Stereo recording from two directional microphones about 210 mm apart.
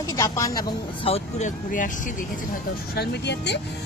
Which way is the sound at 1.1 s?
35° left (ahead or behind).